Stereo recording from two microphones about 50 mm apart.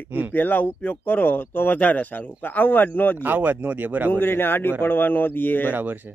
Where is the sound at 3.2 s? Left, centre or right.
Right.